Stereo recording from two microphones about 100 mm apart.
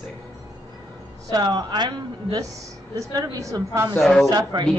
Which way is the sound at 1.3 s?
45° right (ahead or behind).